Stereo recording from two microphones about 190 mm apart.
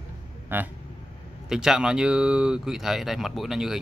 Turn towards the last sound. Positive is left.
turn(degrees=0)  # may be behind; listen again after turning